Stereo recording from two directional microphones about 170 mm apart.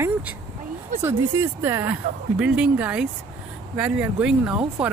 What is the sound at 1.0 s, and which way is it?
Speech, 15° right (ahead or behind).